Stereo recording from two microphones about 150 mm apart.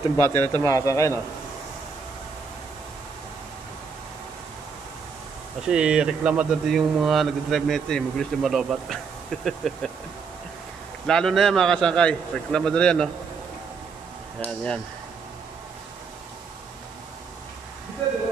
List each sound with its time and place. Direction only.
0.2 s speech: 15° left (ahead or behind)
5.6 s speech: 5° right (ahead or behind)
11.1 s speech: 5° left (ahead or behind)
14.4 s speech: 5° left (ahead or behind)